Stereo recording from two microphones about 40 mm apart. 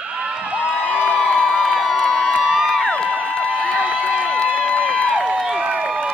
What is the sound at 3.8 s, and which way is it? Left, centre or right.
Run, right.